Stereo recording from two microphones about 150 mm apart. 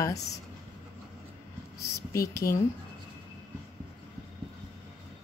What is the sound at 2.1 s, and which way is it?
Speech, 20° left (ahead or behind).